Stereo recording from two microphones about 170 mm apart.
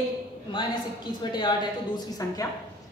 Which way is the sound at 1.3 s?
25° left (ahead or behind).